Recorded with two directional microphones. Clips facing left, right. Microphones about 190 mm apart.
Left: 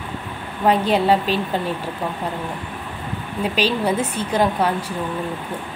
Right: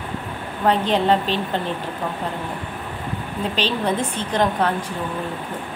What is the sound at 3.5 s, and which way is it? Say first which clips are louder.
A woman's voice: left 2 dB; 10° left (ahead or behind).